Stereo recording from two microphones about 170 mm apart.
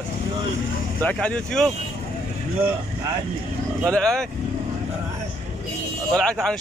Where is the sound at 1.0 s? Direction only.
10° left (ahead or behind).